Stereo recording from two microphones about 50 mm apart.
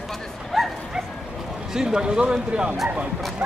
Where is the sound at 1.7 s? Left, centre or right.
Centre.